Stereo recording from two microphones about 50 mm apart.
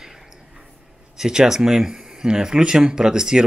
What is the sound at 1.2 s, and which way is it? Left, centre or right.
Speech, centre.